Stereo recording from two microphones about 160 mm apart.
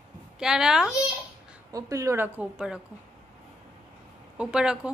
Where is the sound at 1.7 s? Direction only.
20° right (ahead or behind).